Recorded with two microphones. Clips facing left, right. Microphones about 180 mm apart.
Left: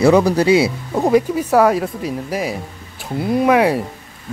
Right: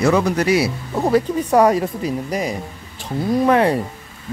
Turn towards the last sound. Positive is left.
turn(degrees=10)  # may be behind; listen again after turning